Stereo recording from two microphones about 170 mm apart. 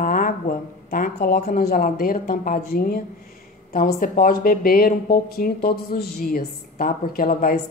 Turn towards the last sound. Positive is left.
turn(degrees=60)  # may be behind; listen again after turning